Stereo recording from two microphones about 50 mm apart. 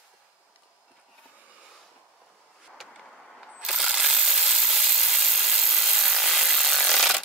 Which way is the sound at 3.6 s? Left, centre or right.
Centre.